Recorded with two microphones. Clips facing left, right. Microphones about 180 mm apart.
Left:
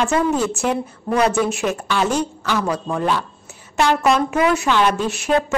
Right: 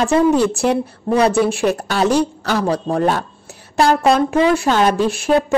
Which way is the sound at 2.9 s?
45° right (ahead or behind).